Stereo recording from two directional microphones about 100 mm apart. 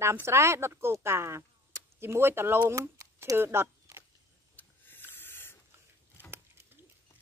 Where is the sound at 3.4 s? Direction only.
25° right (ahead or behind).